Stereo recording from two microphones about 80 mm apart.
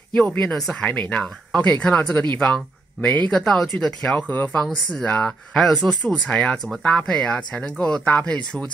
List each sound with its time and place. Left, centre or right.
0.1 s speech: centre
0.8 s speech: centre
5.5 s speech: centre